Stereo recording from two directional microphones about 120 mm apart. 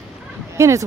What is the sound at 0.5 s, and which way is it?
Speech, 25° right (ahead or behind).